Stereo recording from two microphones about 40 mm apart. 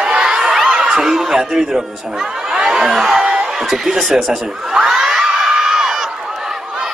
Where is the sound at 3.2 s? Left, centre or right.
Right.